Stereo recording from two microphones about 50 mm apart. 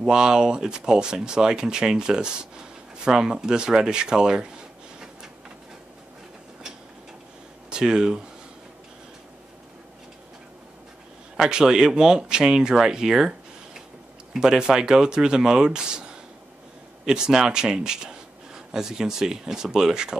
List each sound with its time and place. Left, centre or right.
0.0 s speech: centre
7.7 s speech: centre
11.3 s speech: centre
14.3 s speech: centre